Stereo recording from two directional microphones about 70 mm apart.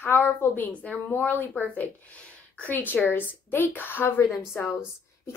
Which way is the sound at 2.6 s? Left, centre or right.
Left.